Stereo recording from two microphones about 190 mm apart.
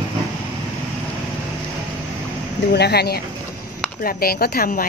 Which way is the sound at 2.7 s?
60° left (ahead or behind).